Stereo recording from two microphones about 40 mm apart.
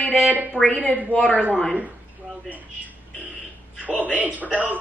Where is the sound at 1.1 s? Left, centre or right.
Left.